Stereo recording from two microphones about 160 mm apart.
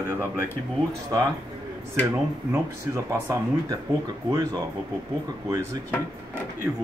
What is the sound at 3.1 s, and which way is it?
Speech, 20° right (ahead or behind).